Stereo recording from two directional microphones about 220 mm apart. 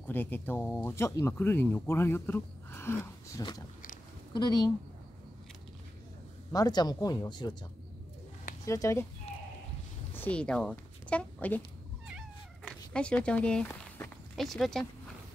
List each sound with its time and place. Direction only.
0.0 s a woman's voice: 10° left (ahead or behind)
6.5 s speech: 15° left (ahead or behind)
8.6 s speech: 15° left (ahead or behind)
10.1 s a woman's voice: 5° left (ahead or behind)
12.1 s cat: centre (ahead or behind)